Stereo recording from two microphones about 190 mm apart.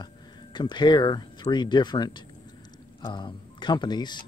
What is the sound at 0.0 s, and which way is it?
Speech, 25° left (ahead or behind).